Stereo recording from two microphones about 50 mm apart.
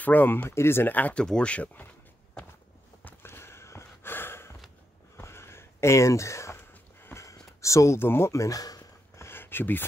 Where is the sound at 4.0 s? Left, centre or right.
Left.